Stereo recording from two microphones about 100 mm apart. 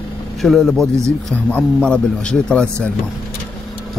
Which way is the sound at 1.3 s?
10° left (ahead or behind).